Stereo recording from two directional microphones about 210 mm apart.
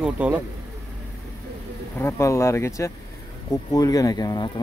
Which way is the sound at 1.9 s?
10° left (ahead or behind).